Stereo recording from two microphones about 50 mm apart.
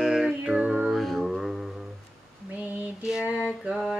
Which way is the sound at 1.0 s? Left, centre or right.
Centre.